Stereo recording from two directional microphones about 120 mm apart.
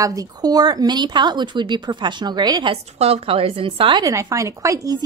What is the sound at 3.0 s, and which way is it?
A woman's voice, 55° right (ahead or behind).